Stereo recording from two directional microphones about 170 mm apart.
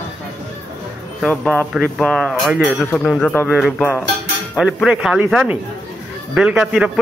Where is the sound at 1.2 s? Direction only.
5° left (ahead or behind).